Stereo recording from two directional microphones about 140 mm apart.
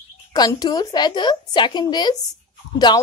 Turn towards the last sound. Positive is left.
turn(degrees=30)  # may be behind; listen again after turning